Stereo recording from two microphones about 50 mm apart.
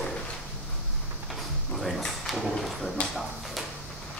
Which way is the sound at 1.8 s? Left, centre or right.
Centre.